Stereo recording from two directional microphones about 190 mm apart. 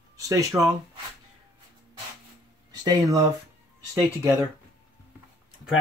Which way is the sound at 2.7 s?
20° right (ahead or behind).